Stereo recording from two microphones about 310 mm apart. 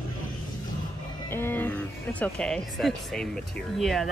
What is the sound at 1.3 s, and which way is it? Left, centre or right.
Speech, centre.